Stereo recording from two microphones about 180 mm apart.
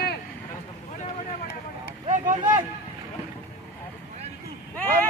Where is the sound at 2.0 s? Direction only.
45° right (ahead or behind).